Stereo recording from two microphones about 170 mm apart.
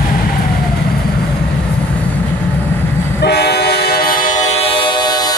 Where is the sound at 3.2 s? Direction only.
70° left (ahead or behind); by 4.4 s 55° left (ahead or behind).